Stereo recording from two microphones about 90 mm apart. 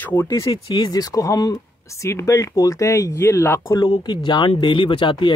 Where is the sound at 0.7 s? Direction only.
45° left (ahead or behind); by 3.6 s 25° left (ahead or behind).